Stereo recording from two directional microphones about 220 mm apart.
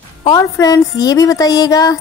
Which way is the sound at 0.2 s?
15° left (ahead or behind).